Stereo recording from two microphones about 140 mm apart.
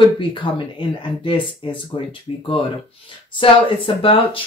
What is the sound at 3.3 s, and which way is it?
Speech, 40° left (ahead or behind).